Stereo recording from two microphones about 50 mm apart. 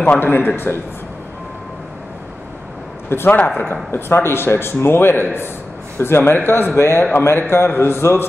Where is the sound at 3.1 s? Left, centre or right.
Left.